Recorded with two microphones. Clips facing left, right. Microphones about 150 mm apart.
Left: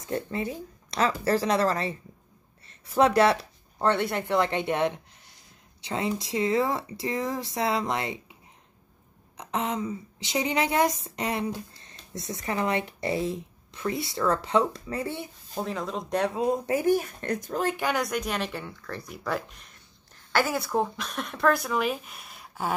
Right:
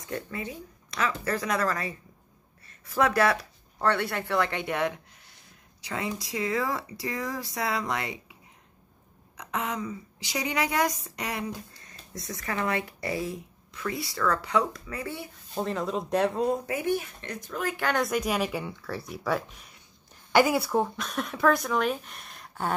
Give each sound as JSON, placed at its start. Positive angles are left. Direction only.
{"t": 0.1, "sound": "a woman's voice", "side_deg": 30}
{"t": 9.4, "sound": "a woman's voice", "side_deg": 25}
{"t": 15.5, "sound": "speech", "side_deg": 0}
{"t": 16.6, "sound": "a woman's voice", "side_deg": 35}
{"t": 17.9, "sound": "speech", "side_deg": 0}